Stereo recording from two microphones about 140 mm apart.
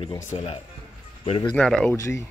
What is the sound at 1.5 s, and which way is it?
Speech, 5° left (ahead or behind).